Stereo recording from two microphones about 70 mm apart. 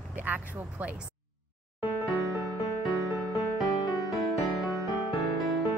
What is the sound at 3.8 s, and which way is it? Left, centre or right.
Music, left.